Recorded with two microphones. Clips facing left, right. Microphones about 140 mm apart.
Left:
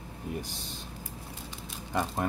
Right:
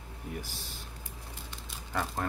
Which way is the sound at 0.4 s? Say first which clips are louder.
Left 3 dB; 20° left (ahead or behind).